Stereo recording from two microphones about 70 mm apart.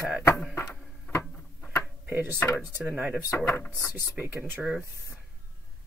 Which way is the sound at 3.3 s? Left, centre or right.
Left.